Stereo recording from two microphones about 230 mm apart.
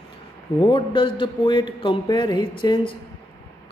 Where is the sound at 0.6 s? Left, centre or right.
Left.